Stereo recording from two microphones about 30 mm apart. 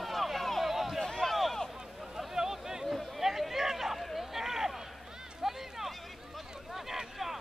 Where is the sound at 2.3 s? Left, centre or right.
Centre.